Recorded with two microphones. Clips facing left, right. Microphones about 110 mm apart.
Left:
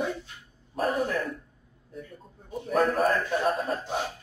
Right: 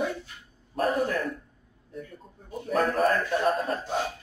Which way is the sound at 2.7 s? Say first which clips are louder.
Even; centre (ahead or behind).